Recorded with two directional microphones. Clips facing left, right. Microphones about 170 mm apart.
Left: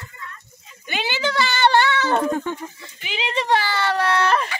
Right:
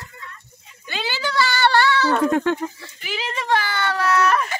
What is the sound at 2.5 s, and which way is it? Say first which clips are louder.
Goat: right 6 dB; 90° right.